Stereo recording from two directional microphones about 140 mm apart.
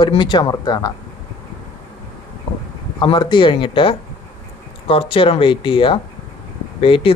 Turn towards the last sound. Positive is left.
turn(degrees=40)  # may be behind; listen again after turning